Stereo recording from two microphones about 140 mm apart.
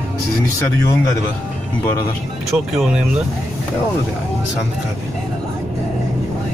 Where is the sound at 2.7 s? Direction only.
5° right (ahead or behind).